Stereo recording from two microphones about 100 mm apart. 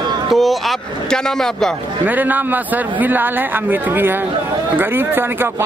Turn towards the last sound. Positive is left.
turn(degrees=-20)  # may be behind; listen again after turning